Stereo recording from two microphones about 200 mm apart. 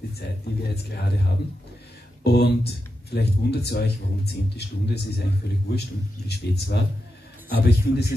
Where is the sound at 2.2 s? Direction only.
55° left (ahead or behind).